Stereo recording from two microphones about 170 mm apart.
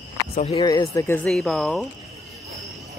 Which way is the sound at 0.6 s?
20° left (ahead or behind).